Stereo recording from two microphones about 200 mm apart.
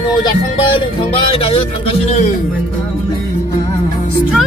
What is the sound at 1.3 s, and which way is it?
Speech, 30° left (ahead or behind).